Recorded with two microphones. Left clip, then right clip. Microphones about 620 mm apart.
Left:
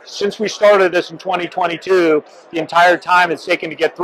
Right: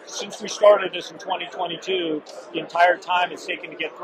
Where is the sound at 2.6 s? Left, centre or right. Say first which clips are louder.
Left 7 dB; left.